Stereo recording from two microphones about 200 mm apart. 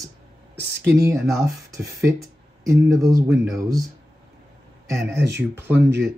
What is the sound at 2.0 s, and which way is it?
Speech, 15° right (ahead or behind).